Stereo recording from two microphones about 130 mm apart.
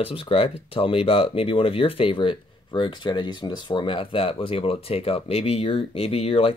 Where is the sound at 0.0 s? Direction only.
45° left (ahead or behind).